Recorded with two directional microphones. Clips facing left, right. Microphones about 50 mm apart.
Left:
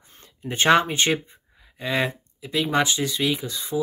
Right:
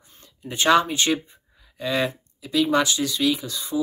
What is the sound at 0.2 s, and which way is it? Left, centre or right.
Speech, left.